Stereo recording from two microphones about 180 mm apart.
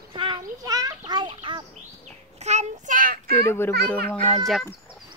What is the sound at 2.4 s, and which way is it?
Child singing, 40° right (ahead or behind).